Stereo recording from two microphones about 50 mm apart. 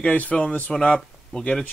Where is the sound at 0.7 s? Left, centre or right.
Centre.